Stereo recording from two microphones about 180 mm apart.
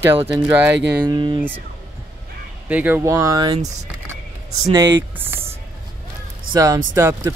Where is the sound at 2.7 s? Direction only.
10° right (ahead or behind).